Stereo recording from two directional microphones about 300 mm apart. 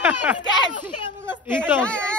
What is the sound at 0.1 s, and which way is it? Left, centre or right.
Speech, centre.